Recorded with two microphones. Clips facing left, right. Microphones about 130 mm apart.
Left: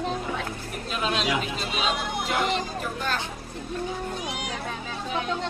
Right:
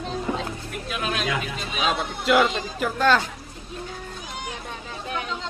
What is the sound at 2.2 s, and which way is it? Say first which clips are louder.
Speech: right 8 dB; 85° right.